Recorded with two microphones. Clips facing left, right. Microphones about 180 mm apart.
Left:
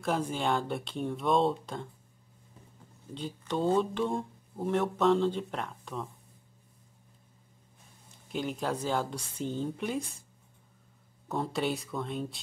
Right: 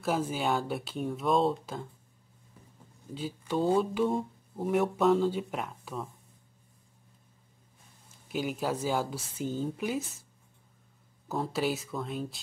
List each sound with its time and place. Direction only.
0.0 s speech: 5° right (ahead or behind)
3.2 s speech: 5° right (ahead or behind)
8.3 s speech: 5° right (ahead or behind)
11.2 s speech: centre (ahead or behind)